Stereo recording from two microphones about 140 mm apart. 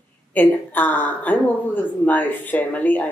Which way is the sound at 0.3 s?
10° left (ahead or behind).